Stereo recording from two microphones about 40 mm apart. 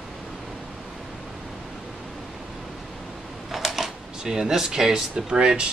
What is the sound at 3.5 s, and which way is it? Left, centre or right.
Speech, centre.